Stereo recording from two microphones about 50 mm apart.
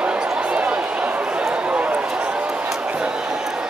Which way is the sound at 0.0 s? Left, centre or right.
Right.